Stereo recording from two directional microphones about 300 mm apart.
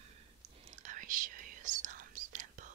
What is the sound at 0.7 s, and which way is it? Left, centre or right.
Whispering, right.